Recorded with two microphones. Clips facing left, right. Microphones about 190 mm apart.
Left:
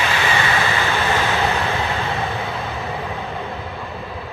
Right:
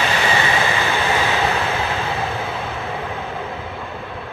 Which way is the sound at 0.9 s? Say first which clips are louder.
Even; 5° right (ahead or behind).